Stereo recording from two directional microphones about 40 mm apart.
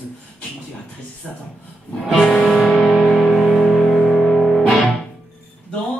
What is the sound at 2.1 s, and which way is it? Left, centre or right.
Music, centre.